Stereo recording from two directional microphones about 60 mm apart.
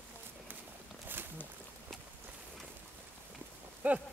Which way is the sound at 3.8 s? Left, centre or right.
Right.